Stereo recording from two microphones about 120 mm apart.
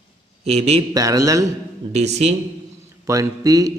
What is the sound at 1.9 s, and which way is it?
Speech, 65° right (ahead or behind).